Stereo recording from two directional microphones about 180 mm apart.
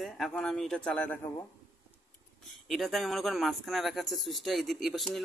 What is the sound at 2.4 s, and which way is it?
Speech, centre (ahead or behind).